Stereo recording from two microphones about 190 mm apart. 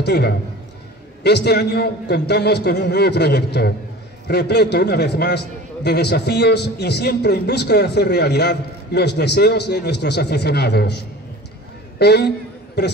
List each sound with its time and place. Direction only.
0.0 s a man's voice: 60° left (ahead or behind)
12.0 s a man's voice: 60° left (ahead or behind)